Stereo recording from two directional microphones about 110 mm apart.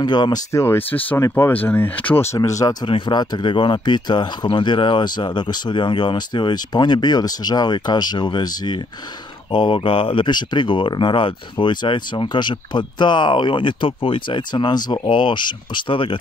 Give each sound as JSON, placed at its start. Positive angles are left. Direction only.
{"t": 0.0, "sound": "speech", "side_deg": 40}
{"t": 0.5, "sound": "speech", "side_deg": 25}
{"t": 2.9, "sound": "speech", "side_deg": 40}